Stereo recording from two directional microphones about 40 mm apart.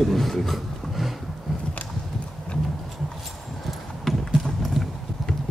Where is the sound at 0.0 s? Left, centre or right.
Centre.